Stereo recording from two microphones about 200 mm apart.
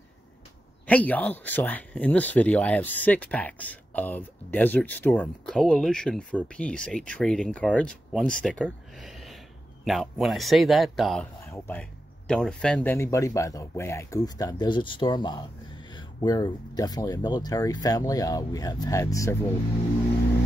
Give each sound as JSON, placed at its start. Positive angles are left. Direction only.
{"t": 0.8, "sound": "speech", "side_deg": 10}